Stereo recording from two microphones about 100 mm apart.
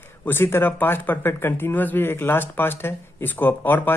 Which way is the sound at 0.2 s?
20° left (ahead or behind).